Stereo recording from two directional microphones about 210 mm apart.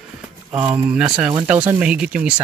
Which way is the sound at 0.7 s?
5° right (ahead or behind).